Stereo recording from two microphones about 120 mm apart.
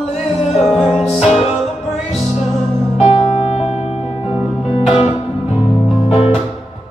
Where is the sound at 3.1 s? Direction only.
50° left (ahead or behind).